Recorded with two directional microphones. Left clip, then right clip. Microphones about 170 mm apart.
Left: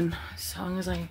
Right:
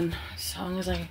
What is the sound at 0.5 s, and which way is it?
Speech, 10° left (ahead or behind).